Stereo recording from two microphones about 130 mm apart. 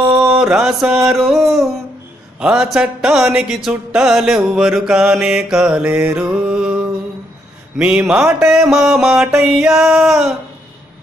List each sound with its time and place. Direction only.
0.0 s mantra: 20° right (ahead or behind)
0.4 s music: 5° right (ahead or behind)
7.7 s a man's voice: 5° right (ahead or behind)
8.1 s music: 5° right (ahead or behind)